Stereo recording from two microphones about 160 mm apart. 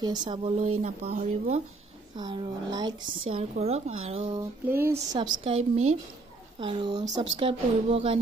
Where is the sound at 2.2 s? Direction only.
25° right (ahead or behind).